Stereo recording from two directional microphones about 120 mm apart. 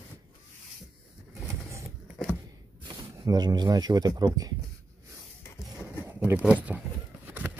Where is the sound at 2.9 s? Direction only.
35° right (ahead or behind).